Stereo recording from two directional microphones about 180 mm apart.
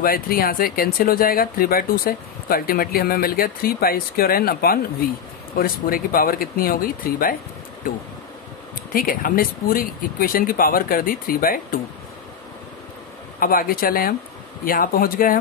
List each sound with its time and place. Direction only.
0.0 s speech: 55° left (ahead or behind)
8.9 s speech: 50° left (ahead or behind)
13.4 s speech: 55° left (ahead or behind)